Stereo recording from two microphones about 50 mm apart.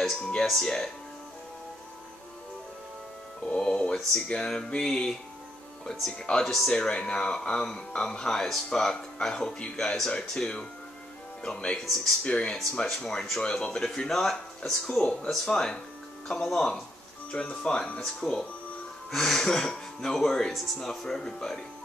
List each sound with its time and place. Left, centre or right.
0.0 s speech: centre
3.4 s speech: centre
11.8 s speech: centre
12.2 s speech: left
13.0 s speech: centre
17.3 s speech: left
18.2 s speech: centre